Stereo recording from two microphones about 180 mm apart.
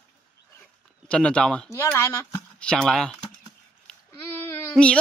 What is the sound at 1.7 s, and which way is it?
Speech, 15° left (ahead or behind).